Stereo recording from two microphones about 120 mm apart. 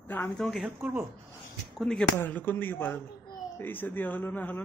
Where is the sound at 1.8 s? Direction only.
5° left (ahead or behind).